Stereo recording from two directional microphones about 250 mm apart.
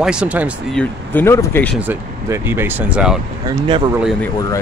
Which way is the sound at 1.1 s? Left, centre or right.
Centre.